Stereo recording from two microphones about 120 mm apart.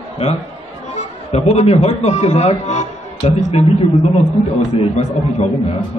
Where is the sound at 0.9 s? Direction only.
65° left (ahead or behind).